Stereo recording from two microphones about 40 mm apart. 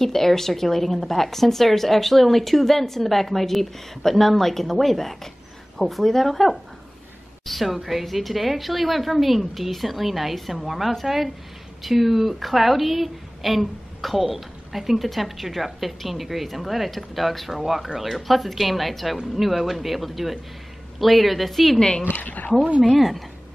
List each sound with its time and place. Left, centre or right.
0.0 s a woman's voice: centre
21.7 s speech: left
22.1 s speech: left
22.9 s a woman's voice: centre